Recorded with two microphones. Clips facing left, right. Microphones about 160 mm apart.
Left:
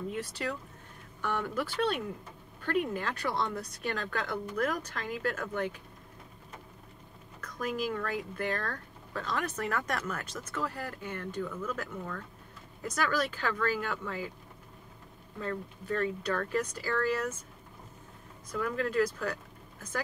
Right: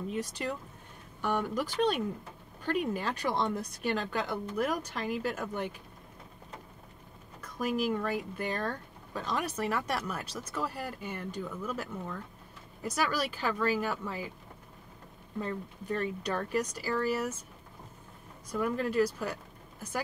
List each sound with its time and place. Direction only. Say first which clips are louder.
0.3 s speech: even; 20° right (ahead or behind)
7.5 s speech: right 3 dB; 10° right (ahead or behind)
15.4 s speech: left 2 dB; 15° right (ahead or behind)
18.5 s speech: right 1 dB; 10° right (ahead or behind)